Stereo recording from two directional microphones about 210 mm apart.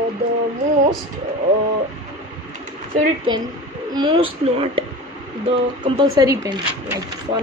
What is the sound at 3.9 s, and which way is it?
Speech, 20° right (ahead or behind).